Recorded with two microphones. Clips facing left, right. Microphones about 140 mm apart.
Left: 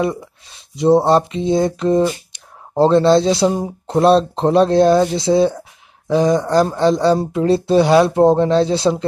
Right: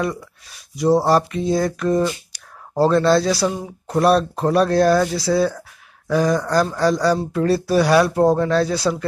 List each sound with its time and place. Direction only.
0.0 s speech: 25° left (ahead or behind)